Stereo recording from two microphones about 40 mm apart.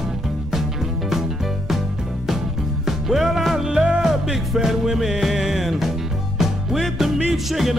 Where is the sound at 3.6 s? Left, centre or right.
Right.